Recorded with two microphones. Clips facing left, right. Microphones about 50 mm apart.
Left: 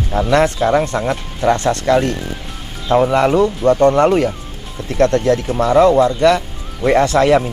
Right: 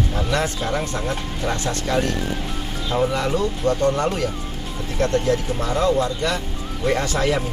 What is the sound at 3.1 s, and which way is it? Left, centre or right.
Speech, left.